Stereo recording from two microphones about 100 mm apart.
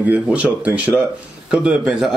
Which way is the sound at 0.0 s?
15° right (ahead or behind).